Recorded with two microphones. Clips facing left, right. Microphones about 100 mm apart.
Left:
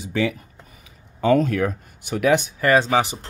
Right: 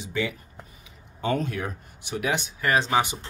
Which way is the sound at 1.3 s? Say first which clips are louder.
Left 9 dB; 80° left.